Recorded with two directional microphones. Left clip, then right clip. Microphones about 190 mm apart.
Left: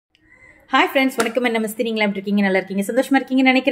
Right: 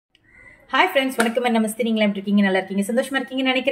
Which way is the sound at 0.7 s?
25° left (ahead or behind).